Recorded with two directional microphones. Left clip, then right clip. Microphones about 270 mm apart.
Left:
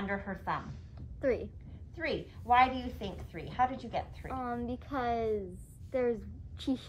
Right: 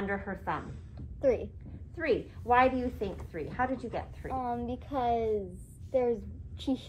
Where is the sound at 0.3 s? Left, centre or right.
Left.